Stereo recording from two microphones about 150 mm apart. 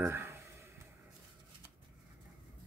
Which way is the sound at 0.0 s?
15° right (ahead or behind).